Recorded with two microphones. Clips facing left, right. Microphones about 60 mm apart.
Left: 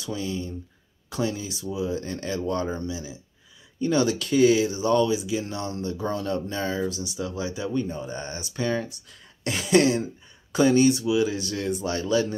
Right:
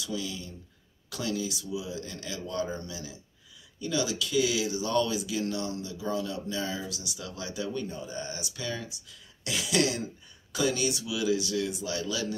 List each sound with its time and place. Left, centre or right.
0.0 s speech: left
3.8 s speech: left
8.0 s speech: left